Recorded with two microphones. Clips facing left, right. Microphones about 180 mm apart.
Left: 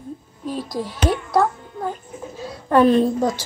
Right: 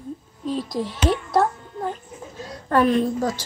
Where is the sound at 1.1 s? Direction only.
Centre (ahead or behind).